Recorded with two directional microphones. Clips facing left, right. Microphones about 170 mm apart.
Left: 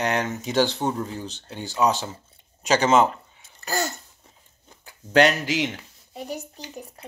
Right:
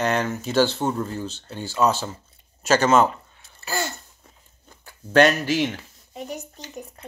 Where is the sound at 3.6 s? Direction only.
40° left (ahead or behind).